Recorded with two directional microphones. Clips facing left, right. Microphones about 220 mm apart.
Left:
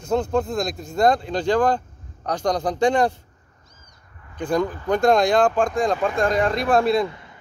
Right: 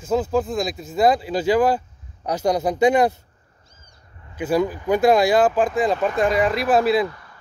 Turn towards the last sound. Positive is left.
turn(degrees=20)  # may be behind; listen again after turning